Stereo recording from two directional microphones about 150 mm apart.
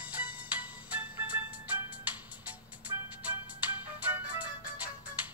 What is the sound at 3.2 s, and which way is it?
Music, 10° right (ahead or behind).